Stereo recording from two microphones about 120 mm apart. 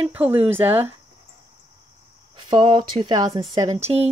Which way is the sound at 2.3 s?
40° right (ahead or behind).